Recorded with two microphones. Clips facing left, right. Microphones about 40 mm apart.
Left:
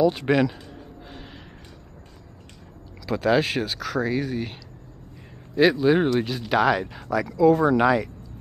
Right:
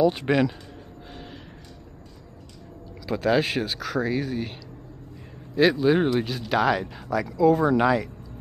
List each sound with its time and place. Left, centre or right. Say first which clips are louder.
0.0 s speech: left 1 dB; centre
1.1 s a sound: right 3 dB; centre
3.1 s speech: left 1 dB; centre